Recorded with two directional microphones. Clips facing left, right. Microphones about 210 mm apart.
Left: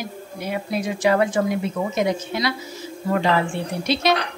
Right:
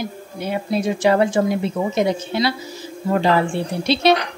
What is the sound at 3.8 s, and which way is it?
Speech, 30° right (ahead or behind).